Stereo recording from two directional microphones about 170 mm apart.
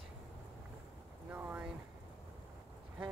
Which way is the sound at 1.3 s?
10° right (ahead or behind).